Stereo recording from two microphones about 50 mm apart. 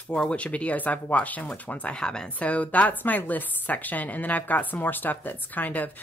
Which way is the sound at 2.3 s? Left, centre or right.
Left.